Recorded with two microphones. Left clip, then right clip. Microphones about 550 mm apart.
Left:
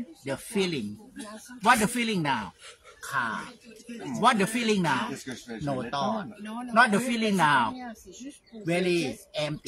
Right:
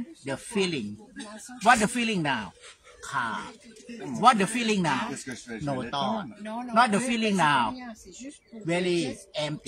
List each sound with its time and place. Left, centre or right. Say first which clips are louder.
0.2 s speech: right 1 dB; left